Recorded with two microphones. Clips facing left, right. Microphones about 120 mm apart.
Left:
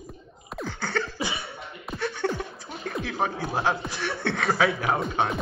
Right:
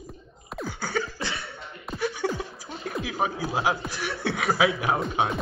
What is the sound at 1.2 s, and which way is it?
Cough, 25° left (ahead or behind).